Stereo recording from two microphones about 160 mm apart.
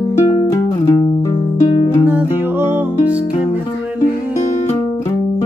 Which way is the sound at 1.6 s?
40° left (ahead or behind).